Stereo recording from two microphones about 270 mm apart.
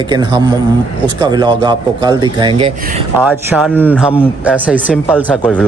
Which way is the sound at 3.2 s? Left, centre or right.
Centre.